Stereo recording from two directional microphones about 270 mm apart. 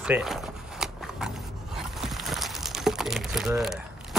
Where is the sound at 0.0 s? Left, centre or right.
Centre.